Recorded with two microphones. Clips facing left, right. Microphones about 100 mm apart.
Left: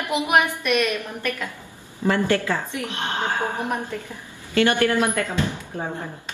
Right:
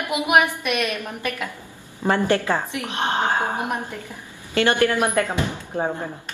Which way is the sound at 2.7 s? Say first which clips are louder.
Right 3 dB; 20° right (ahead or behind).